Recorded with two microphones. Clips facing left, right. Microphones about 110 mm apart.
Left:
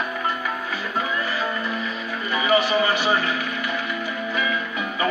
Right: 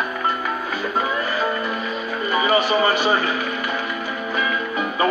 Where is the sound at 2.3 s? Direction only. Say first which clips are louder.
Right 1 dB; 40° right (ahead or behind).